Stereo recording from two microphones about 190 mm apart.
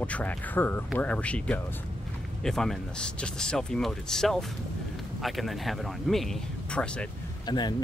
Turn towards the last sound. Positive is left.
turn(degrees=20)  # may be behind; listen again after turning